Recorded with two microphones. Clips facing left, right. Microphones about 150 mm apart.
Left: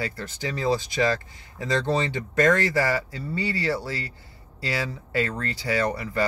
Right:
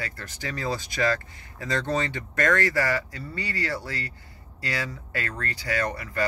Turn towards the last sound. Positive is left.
turn(degrees=30)  # may be behind; listen again after turning